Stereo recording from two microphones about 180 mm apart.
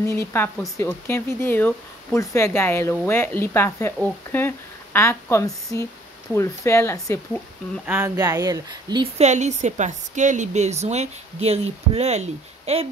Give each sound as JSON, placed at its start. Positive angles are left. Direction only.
{"t": 0.1, "sound": "speech", "side_deg": 15}
{"t": 7.8, "sound": "speech", "side_deg": -10}
{"t": 8.2, "sound": "speech", "side_deg": -20}
{"t": 9.2, "sound": "a woman's voice", "side_deg": -40}